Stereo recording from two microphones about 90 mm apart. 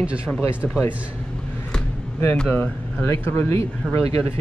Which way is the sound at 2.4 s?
10° left (ahead or behind).